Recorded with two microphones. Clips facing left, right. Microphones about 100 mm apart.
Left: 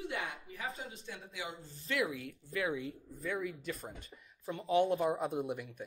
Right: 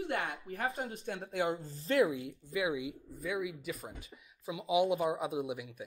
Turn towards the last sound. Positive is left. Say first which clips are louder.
# even
turn(degrees=0)  # may be behind; listen again after turning